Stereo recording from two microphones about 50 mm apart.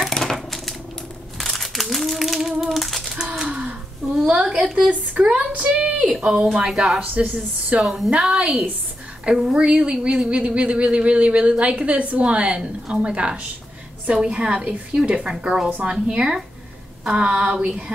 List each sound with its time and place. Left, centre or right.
0.1 s typewriter: centre
1.4 s crumpling: centre
3.2 s typewriter: centre
4.5 s a sound: centre
5.2 s a woman's voice: centre
7.0 s speech: right
7.8 s a woman's voice: centre
8.2 s speech: centre